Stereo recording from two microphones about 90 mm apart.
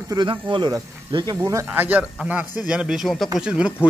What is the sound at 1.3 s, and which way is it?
Speech, 35° right (ahead or behind).